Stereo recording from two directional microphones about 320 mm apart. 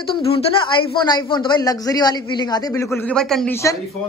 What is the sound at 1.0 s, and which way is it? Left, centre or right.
Speech, centre.